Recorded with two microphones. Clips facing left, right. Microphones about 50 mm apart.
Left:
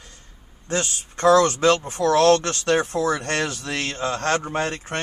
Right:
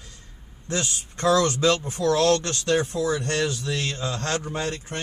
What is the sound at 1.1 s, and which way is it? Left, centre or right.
Speech, left.